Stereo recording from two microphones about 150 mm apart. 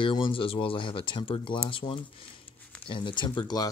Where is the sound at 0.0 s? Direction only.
35° left (ahead or behind).